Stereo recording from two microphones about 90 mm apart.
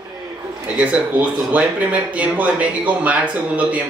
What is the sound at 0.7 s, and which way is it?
Speech, 15° right (ahead or behind).